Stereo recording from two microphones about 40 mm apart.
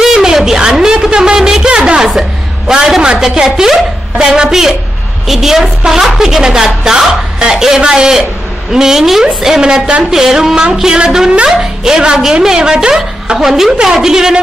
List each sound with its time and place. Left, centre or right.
0.0 s a sound: centre
3.0 s a woman's voice: centre
13.4 s a woman's voice: centre